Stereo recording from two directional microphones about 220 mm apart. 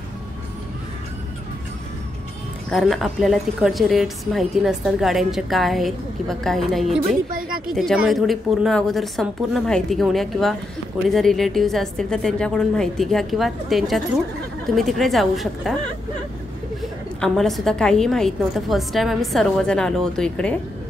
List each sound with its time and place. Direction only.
2.7 s a woman's voice: centre (ahead or behind)
7.2 s a sound: 40° right (ahead or behind)
7.7 s a woman's voice: centre (ahead or behind)
17.2 s a woman's voice: centre (ahead or behind)